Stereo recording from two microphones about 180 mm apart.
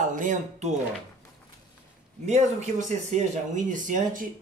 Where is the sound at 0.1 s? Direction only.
45° right (ahead or behind).